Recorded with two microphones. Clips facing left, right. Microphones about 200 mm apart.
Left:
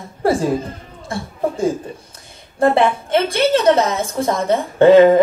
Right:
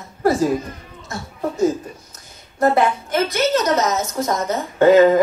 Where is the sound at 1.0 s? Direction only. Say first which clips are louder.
Left 4 dB; 30° left (ahead or behind).